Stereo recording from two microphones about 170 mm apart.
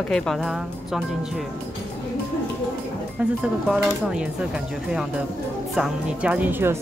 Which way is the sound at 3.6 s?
5° right (ahead or behind).